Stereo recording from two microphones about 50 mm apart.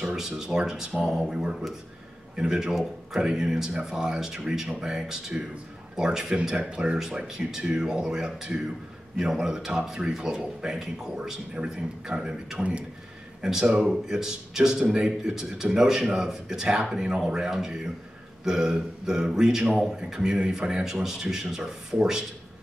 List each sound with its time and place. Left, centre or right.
0.1 s a man's voice: centre
2.7 s a man's voice: centre